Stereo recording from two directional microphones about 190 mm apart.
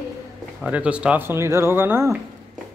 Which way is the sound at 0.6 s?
5° right (ahead or behind).